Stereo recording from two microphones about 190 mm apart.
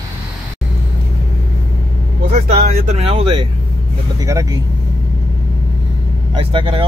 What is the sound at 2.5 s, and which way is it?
Speech, 35° right (ahead or behind).